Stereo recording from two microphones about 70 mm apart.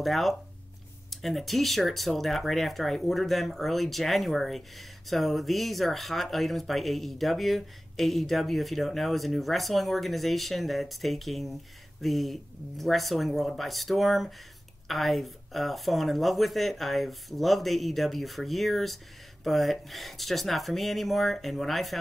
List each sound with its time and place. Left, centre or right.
0.0 s speech: centre